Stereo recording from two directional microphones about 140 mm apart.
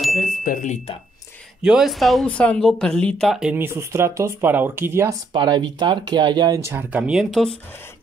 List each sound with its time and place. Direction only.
0.5 s speech: 65° left (ahead or behind)
1.6 s speech: 5° right (ahead or behind)
3.5 s speech: 15° right (ahead or behind)
5.3 s speech: 30° right (ahead or behind)
7.0 s speech: 5° right (ahead or behind)